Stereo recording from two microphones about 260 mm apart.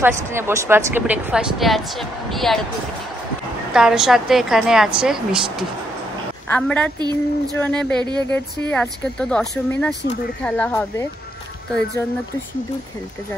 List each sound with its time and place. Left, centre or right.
0.0 s speech: centre
3.7 s speech: centre
6.5 s speech: centre
7.0 s female singing: centre
7.5 s speech: centre